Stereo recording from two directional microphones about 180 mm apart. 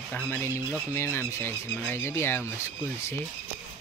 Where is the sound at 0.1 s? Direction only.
10° left (ahead or behind).